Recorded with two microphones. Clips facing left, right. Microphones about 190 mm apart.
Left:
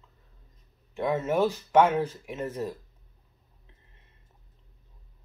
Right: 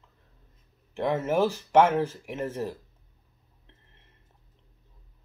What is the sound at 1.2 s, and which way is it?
Speech, 10° right (ahead or behind).